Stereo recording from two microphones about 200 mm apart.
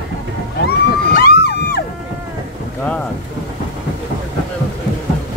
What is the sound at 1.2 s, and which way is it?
Music, 50° left (ahead or behind).